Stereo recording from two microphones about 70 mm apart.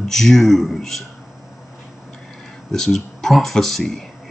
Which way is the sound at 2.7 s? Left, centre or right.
Centre.